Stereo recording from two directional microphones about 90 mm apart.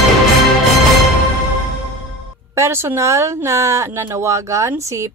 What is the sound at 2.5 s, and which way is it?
Speech, 30° right (ahead or behind).